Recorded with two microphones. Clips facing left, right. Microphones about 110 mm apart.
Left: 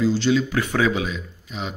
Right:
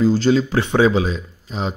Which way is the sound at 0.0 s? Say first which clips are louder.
Right 4 dB; 40° right (ahead or behind).